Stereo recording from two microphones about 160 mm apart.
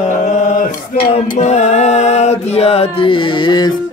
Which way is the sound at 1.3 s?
45° left (ahead or behind).